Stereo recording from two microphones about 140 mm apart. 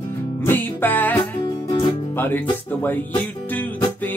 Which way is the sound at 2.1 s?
15° left (ahead or behind).